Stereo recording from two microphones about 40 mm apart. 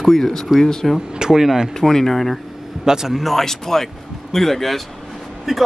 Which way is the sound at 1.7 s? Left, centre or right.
Centre.